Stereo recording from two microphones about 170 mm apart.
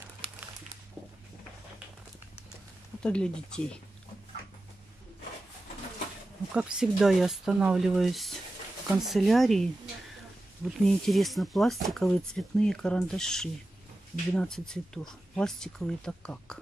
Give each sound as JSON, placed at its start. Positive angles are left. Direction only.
{"t": 0.2, "sound": "a sound", "side_deg": -35}
{"t": 3.0, "sound": "speech", "side_deg": 5}
{"t": 6.5, "sound": "speech", "side_deg": -5}